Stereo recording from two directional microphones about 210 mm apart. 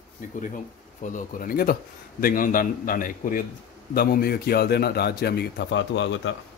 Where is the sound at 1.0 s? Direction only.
40° left (ahead or behind).